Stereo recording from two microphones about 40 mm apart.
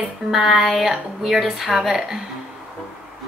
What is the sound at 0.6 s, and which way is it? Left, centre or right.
Speech, centre.